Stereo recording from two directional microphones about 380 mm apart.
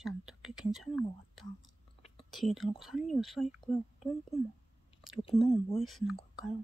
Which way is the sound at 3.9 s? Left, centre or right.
Centre.